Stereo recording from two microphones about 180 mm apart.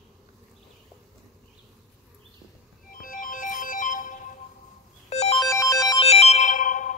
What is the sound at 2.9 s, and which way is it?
Music, 50° left (ahead or behind).